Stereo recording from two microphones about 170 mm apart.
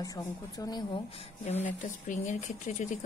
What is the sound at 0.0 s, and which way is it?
A woman's voice, 20° left (ahead or behind).